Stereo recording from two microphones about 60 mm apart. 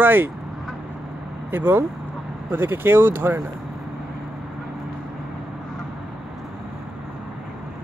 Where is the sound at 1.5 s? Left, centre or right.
Right.